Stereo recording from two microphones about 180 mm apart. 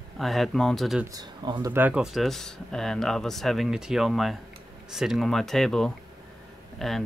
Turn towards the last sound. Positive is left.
turn(degrees=0)  # may be behind; listen again after turning